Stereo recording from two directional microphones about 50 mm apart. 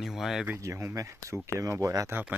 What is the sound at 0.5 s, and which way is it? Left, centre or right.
Speech, right.